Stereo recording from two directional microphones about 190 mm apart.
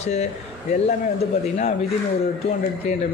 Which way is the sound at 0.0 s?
35° left (ahead or behind).